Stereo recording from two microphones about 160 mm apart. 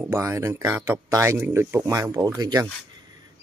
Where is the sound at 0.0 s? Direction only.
15° right (ahead or behind).